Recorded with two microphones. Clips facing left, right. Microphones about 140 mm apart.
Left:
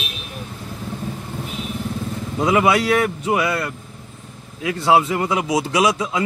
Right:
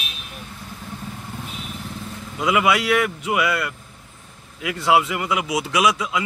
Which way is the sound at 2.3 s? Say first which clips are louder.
Left 3 dB; 30° left (ahead or behind).